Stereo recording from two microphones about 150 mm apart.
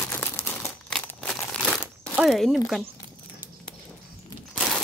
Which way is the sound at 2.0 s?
Centre (ahead or behind).